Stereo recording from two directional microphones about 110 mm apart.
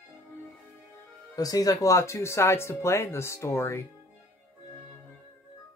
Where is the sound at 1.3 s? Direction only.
35° left (ahead or behind).